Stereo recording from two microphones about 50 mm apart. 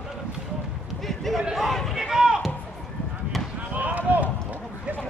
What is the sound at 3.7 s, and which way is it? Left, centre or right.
Run, right.